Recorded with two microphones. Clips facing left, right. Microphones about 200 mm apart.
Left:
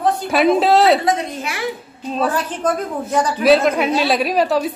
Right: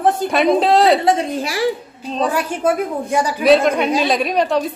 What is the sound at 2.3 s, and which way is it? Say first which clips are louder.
A woman's voice: right 3 dB; 10° right (ahead or behind).